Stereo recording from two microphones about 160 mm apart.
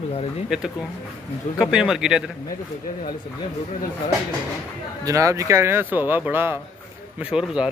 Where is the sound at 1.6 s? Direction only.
5° right (ahead or behind).